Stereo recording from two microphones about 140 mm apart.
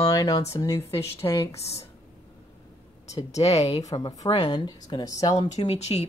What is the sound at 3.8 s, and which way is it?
Speech, 30° left (ahead or behind).